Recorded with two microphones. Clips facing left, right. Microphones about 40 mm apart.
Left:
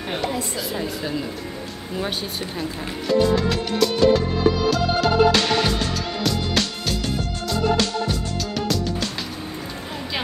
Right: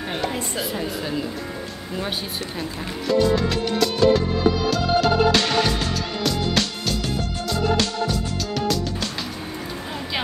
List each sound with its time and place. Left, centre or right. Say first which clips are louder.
3.1 s music: even; centre